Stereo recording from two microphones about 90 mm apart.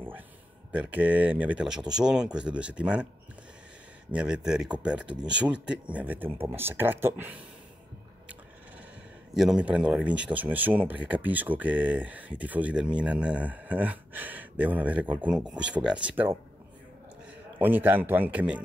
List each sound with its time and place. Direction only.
0.7 s speech: 20° right (ahead or behind)
4.1 s speech: 10° right (ahead or behind)
9.3 s speech: 5° right (ahead or behind)
17.6 s speech: 20° right (ahead or behind)